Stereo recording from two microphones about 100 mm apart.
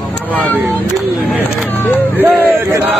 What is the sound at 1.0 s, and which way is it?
Speech, centre (ahead or behind).